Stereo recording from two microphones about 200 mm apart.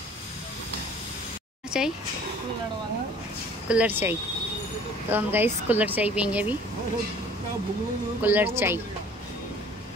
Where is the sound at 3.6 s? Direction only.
5° right (ahead or behind).